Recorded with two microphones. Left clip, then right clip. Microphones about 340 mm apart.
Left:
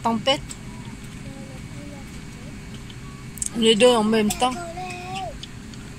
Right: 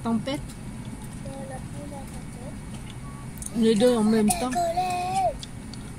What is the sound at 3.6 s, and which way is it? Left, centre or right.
Speech, centre.